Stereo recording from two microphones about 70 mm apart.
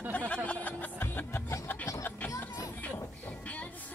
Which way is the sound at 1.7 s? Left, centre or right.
Left.